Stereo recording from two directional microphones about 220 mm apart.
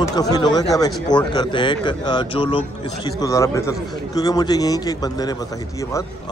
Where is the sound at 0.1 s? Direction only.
15° left (ahead or behind).